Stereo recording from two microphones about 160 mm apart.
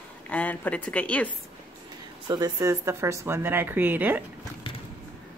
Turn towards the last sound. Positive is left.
turn(degrees=-10)  # may be behind; listen again after turning